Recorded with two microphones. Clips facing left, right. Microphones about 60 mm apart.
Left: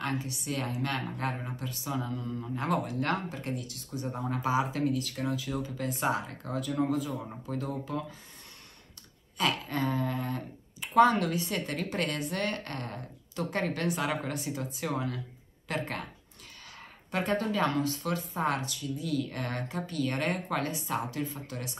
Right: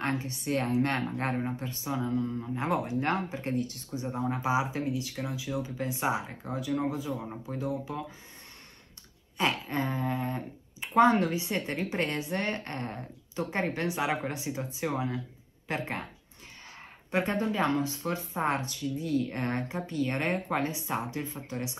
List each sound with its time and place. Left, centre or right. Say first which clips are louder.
0.0 s a woman's voice: right 2 dB; right
2.4 s speech: right 1 dB; centre; by 3.8 s right
4.3 s speech: even; centre
5.1 s speech: left 3 dB; centre
5.4 s speech: right 1 dB; centre
9.4 s speech: right 1 dB; right
17.1 s speech: right 1 dB; right